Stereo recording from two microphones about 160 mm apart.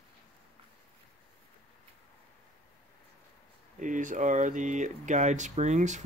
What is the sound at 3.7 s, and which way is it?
Speech, 55° right (ahead or behind).